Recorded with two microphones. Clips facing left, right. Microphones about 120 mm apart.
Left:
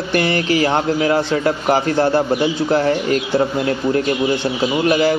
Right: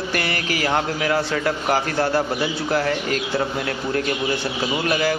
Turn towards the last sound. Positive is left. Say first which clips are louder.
# left 6 dB
turn(degrees=25)  # may be behind; listen again after turning